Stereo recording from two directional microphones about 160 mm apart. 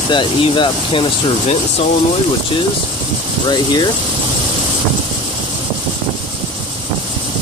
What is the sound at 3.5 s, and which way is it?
Speech, 25° left (ahead or behind).